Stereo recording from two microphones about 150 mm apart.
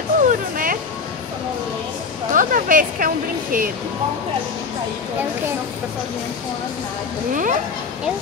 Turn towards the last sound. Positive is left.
turn(degrees=-60)  # may be behind; listen again after turning